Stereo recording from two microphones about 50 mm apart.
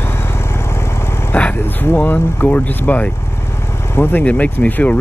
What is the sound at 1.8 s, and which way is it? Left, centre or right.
Speech, left.